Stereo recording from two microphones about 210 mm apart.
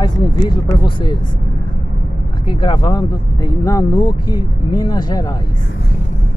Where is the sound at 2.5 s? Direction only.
20° left (ahead or behind).